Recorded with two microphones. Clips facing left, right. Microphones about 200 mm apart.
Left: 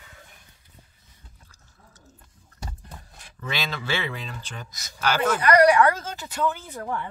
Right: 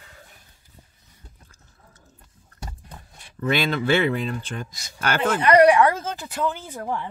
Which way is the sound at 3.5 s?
55° right (ahead or behind).